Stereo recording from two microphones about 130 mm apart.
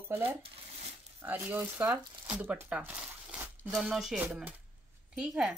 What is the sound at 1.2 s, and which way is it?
Speech, 15° right (ahead or behind).